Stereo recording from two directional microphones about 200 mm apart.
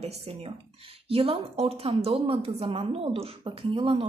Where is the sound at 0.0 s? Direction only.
30° right (ahead or behind).